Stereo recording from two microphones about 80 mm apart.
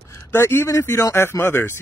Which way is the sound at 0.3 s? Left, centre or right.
Left.